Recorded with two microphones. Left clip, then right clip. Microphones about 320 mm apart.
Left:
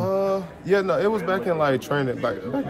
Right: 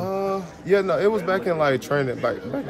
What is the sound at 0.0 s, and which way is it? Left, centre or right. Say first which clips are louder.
A man's voice: left 3 dB; centre.